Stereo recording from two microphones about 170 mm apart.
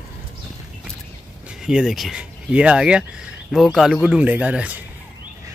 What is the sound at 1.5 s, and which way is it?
Speech, 5° right (ahead or behind).